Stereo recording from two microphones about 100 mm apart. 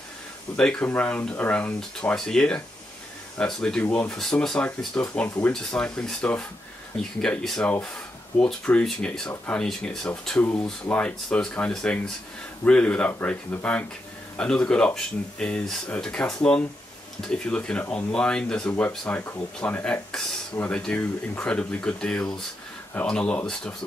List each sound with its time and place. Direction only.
0.6 s speech: 10° left (ahead or behind)
4.2 s speech: 5° left (ahead or behind)